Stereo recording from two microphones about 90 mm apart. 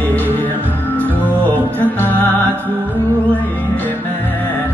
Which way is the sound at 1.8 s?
20° left (ahead or behind).